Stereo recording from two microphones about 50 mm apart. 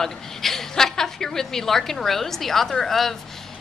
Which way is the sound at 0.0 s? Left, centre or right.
Centre.